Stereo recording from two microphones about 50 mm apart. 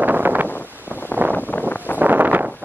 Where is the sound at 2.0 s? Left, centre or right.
Right.